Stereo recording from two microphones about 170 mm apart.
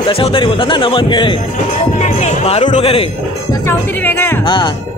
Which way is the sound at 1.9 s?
40° left (ahead or behind).